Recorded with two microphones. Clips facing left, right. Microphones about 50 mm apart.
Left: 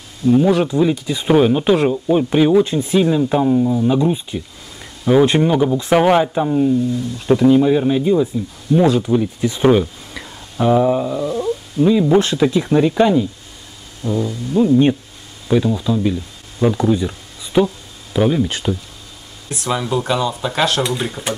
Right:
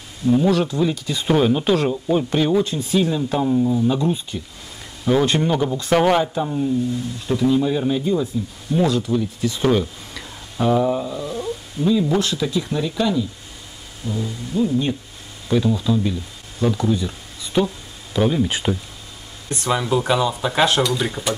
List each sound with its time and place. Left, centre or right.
0.3 s speech: centre
2.6 s speech: left
7.6 s speech: centre; by 15.0 s left
15.4 s speech: centre
18.5 s speech: centre
19.5 s speech: centre